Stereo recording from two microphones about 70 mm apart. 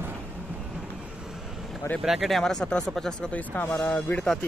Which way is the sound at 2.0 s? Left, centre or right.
Centre.